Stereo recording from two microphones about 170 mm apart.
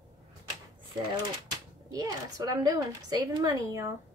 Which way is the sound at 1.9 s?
20° right (ahead or behind).